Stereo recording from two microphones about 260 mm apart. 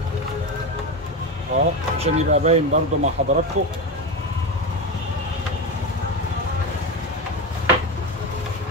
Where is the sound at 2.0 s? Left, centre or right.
Right.